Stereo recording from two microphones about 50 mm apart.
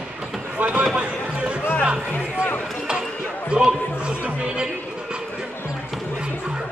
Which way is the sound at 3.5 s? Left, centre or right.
Centre.